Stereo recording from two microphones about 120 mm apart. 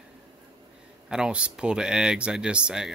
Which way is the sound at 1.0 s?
5° right (ahead or behind).